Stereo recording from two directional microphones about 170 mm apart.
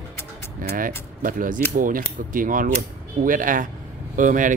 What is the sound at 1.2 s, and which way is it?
Mechanisms, 55° right (ahead or behind).